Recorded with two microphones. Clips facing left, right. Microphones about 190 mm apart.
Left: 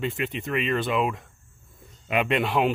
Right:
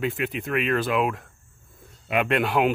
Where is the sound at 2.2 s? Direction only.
Centre (ahead or behind).